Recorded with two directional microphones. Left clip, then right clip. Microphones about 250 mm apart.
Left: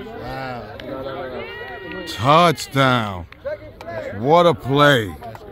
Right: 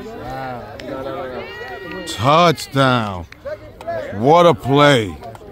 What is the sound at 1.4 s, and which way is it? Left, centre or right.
Speech, right.